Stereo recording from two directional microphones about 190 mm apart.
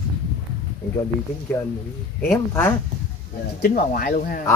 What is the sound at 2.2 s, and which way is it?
Speech, 15° left (ahead or behind).